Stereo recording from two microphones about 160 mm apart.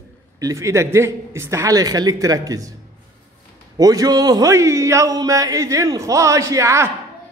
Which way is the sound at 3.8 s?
25° right (ahead or behind).